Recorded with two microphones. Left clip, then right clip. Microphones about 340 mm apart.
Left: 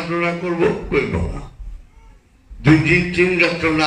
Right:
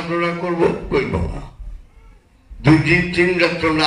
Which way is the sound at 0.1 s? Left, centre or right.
Right.